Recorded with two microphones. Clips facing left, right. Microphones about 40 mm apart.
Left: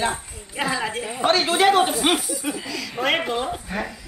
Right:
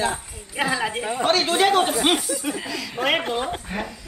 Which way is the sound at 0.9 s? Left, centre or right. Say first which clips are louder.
Right 2 dB; right.